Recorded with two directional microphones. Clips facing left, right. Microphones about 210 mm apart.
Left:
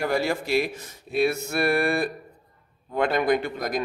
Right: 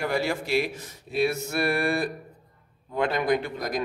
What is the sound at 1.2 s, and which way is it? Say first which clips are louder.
A man's voice: left 2 dB; 55° left (ahead or behind).